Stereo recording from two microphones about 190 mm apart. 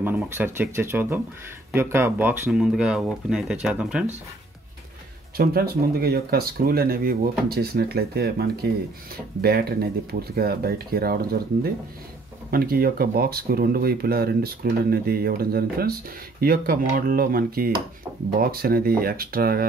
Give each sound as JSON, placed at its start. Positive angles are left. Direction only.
{"t": 0.0, "sound": "speech", "side_deg": -10}
{"t": 5.4, "sound": "speech", "side_deg": -55}